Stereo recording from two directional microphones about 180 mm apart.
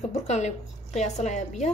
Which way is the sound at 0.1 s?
40° left (ahead or behind).